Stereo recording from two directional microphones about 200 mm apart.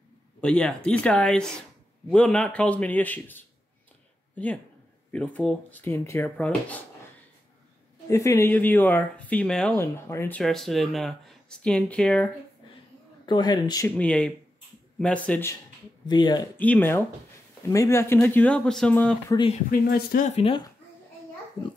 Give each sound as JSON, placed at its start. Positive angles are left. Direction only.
{"t": 0.4, "sound": "speech", "side_deg": 5}
{"t": 5.1, "sound": "speech", "side_deg": 5}
{"t": 8.1, "sound": "speech", "side_deg": 15}
{"t": 13.2, "sound": "speech", "side_deg": 20}
{"t": 13.9, "sound": "speech", "side_deg": 5}
{"t": 16.1, "sound": "speech", "side_deg": 20}
{"t": 16.5, "sound": "speech", "side_deg": 10}
{"t": 19.3, "sound": "speech", "side_deg": 25}
{"t": 19.7, "sound": "speech", "side_deg": 45}